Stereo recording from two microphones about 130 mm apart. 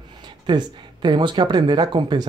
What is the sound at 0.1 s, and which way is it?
Speech, 35° right (ahead or behind).